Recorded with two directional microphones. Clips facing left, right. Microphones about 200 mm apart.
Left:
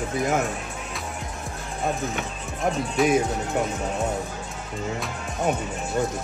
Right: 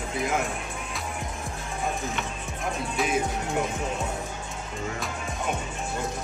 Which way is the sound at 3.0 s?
Centre (ahead or behind).